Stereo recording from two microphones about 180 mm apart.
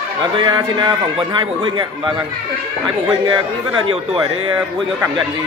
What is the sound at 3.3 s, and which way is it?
A man's voice, 25° right (ahead or behind).